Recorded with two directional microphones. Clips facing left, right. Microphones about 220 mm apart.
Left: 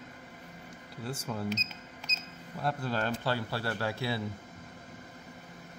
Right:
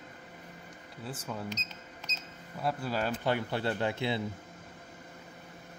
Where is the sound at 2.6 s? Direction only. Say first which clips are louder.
Even; 10° right (ahead or behind).